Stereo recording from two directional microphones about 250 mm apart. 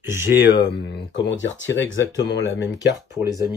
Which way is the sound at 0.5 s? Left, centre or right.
Left.